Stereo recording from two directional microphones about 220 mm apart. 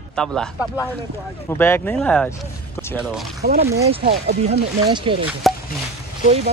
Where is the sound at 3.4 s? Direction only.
40° right (ahead or behind).